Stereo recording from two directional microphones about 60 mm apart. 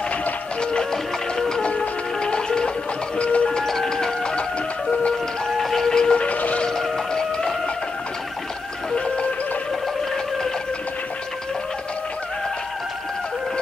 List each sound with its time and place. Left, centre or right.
0.6 s music: centre
6.2 s music: left
6.7 s music: centre
8.9 s music: centre